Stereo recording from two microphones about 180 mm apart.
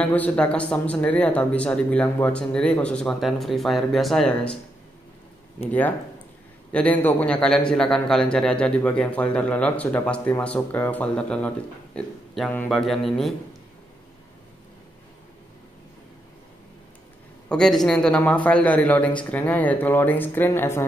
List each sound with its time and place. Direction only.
0.0 s speech: 10° left (ahead or behind)
5.7 s a man's voice: 10° left (ahead or behind)
17.5 s a man's voice: centre (ahead or behind)